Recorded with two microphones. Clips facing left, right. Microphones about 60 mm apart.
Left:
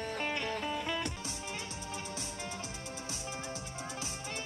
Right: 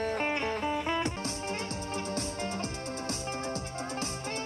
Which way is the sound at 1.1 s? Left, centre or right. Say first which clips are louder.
Right 7 dB; right.